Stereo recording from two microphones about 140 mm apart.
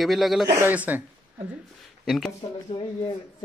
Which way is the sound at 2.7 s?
40° left (ahead or behind).